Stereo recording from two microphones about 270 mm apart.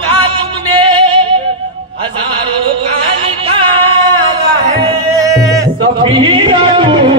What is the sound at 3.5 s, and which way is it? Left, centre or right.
Music, centre.